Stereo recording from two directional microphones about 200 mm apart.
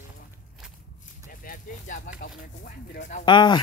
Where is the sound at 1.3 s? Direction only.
45° left (ahead or behind).